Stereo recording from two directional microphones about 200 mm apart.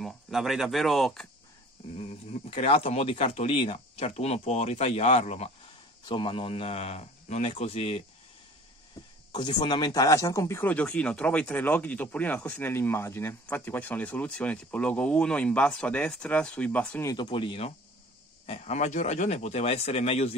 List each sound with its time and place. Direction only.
0.0 s speech: centre (ahead or behind)
2.0 s a man's voice: 30° left (ahead or behind)
9.3 s speech: 20° left (ahead or behind); by 17.1 s 5° left (ahead or behind)
17.1 s a man's voice: 25° left (ahead or behind)